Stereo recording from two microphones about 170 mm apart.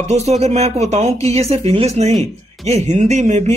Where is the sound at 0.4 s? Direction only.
40° right (ahead or behind).